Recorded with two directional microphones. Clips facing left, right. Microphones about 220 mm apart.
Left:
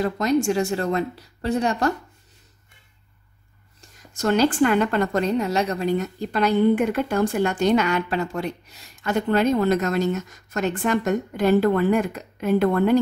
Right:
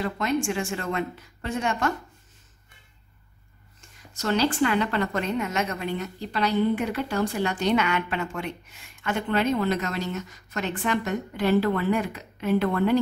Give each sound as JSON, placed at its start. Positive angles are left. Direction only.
{"t": 0.0, "sound": "a woman's voice", "side_deg": 40}
{"t": 3.8, "sound": "a woman's voice", "side_deg": 50}